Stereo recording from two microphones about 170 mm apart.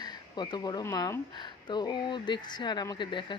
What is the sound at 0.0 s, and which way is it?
Speech, 25° left (ahead or behind).